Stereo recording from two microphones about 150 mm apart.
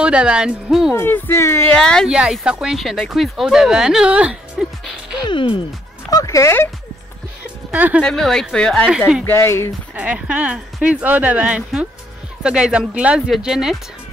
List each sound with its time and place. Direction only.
0.0 s speech: 5° right (ahead or behind)
0.9 s speech: 15° left (ahead or behind)
1.8 s speech: 5° left (ahead or behind)
2.1 s speech: 5° right (ahead or behind)
5.2 s speech: 35° left (ahead or behind)
6.0 s speech: 20° left (ahead or behind)
7.7 s speech: 10° right (ahead or behind)
8.0 s speech: 5° left (ahead or behind)
9.2 s speech: 15° left (ahead or behind)
9.9 s speech: 10° right (ahead or behind)